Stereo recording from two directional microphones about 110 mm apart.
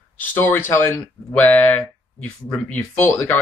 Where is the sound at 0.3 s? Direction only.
20° left (ahead or behind).